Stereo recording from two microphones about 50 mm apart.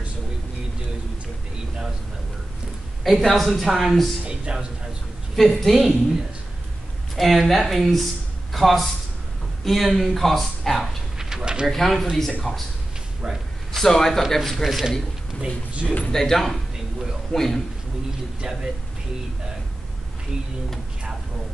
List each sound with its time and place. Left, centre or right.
3.0 s a sound: centre
3.3 s speech: centre
4.3 s music: centre
5.3 s speech: centre
7.2 s speech: centre
11.1 s a sound: centre
11.7 s speech: centre
13.7 s speech: centre
15.4 s speech: right
16.1 s a man's voice: centre